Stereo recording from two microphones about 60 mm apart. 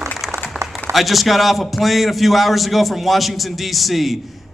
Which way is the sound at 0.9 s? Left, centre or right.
Centre.